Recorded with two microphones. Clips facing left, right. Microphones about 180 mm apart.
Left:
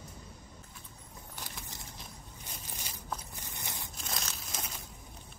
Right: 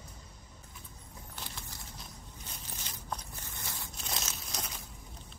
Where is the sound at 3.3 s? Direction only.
15° left (ahead or behind).